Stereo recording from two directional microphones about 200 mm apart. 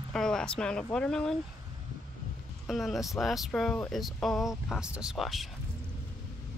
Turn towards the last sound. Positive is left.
turn(degrees=0)  # may be behind; listen again after turning